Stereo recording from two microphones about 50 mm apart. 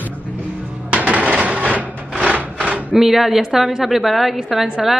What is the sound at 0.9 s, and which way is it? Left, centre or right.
Wood, right.